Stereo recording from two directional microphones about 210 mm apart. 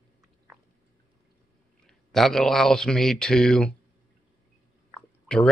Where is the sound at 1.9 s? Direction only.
Centre (ahead or behind).